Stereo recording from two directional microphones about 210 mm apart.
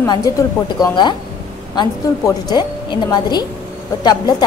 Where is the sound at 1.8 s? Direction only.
20° left (ahead or behind).